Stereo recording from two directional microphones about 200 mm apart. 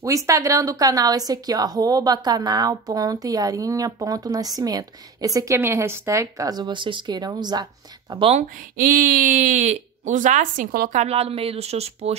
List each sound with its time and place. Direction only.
0.0 s a woman's voice: 15° right (ahead or behind); by 12.2 s 30° right (ahead or behind)